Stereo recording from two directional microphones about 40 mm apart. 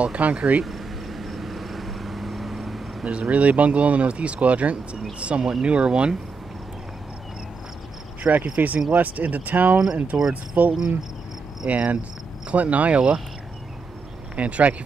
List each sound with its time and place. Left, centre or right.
0.0 s speech: right
0.7 s vehicle: centre
3.1 s speech: right
8.2 s speech: right
14.3 s speech: right